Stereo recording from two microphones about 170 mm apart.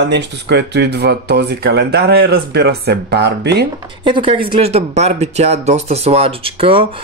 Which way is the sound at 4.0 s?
30° right (ahead or behind).